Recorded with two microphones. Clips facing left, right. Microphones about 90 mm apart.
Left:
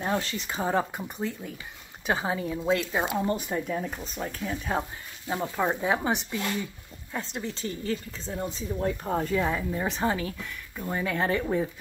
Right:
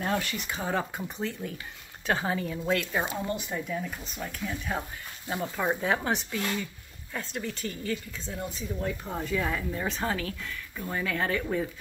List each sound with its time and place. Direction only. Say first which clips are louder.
0.0 s speech: left 1 dB; 20° left (ahead or behind)
0.3 s a woman's voice: left 2 dB; 30° left (ahead or behind)
0.9 s a woman's voice: left 1 dB; 10° left (ahead or behind)
3.2 s a woman's voice: left 4 dB; 40° left (ahead or behind)
5.3 s a woman's voice: left 2 dB; 20° left (ahead or behind); by 9.4 s 40° left (ahead or behind)
9.4 s speech: left 3 dB; 20° left (ahead or behind)